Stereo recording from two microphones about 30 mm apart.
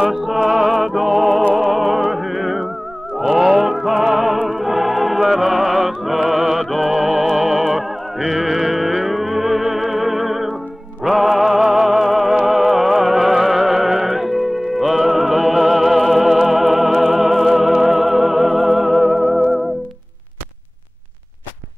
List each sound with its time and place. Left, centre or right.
0.0 s music: centre